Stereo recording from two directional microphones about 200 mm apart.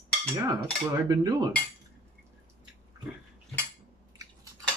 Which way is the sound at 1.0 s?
20° right (ahead or behind).